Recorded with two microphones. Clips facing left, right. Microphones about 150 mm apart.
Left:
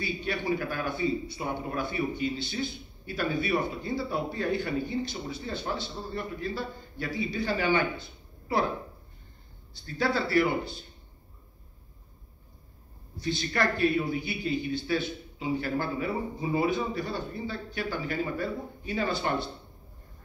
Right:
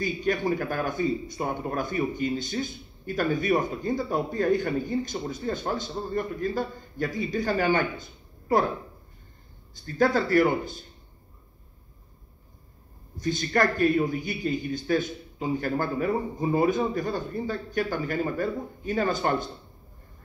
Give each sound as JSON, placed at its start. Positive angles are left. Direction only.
{"t": 0.0, "sound": "a man's voice", "side_deg": -45}
{"t": 9.8, "sound": "a man's voice", "side_deg": -45}
{"t": 13.2, "sound": "a man's voice", "side_deg": -45}